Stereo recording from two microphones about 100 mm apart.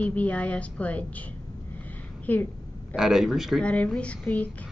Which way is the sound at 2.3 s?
15° left (ahead or behind).